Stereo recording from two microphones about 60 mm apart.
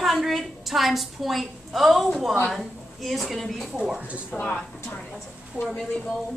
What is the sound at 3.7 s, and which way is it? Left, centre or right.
Speech, centre.